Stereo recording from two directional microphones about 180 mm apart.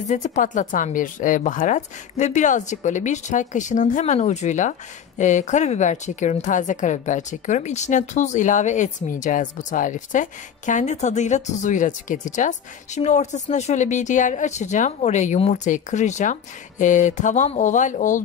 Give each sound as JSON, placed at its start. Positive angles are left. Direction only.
{"t": 0.1, "sound": "speech", "side_deg": 45}